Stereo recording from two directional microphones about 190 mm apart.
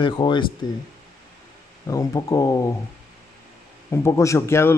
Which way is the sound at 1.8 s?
20° left (ahead or behind).